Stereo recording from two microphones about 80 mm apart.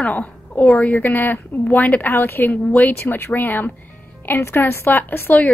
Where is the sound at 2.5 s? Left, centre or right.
Centre.